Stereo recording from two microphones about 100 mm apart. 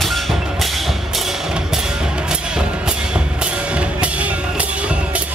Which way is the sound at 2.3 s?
10° right (ahead or behind).